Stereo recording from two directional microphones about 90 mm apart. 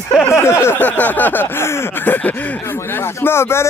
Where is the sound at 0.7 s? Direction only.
15° left (ahead or behind).